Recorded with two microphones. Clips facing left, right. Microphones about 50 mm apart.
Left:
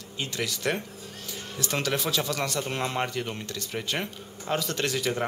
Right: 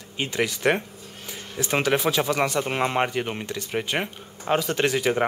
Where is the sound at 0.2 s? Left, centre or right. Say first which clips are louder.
Right 6 dB; right.